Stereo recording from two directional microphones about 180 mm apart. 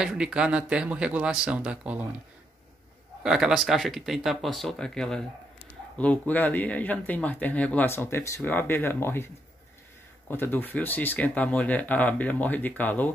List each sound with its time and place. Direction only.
0.0 s speech: 5° right (ahead or behind)
3.3 s speech: 5° right (ahead or behind)